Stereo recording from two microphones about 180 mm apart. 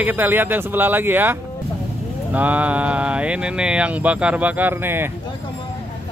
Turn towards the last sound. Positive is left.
turn(degrees=-10)  # may be behind; listen again after turning